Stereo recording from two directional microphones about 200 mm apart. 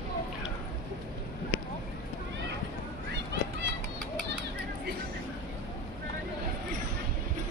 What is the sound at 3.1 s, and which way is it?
Children playing, 60° right (ahead or behind).